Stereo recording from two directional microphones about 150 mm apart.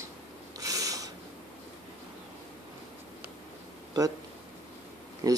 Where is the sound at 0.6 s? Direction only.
25° right (ahead or behind).